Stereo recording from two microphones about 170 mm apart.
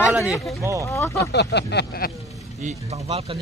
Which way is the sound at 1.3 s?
80° left.